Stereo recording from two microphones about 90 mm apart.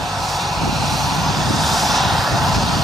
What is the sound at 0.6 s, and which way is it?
Vehicle, centre (ahead or behind).